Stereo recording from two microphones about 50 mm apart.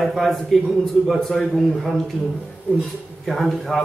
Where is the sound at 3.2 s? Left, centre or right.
Centre.